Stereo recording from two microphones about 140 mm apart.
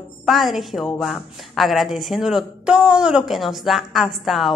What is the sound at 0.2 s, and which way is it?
A woman's voice, centre (ahead or behind).